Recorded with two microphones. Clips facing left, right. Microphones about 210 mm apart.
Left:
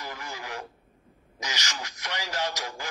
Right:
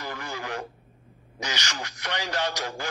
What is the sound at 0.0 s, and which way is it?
Radio, 35° right (ahead or behind).